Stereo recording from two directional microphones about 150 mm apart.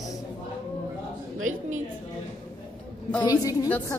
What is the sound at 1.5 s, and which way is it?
Speech, 55° right (ahead or behind).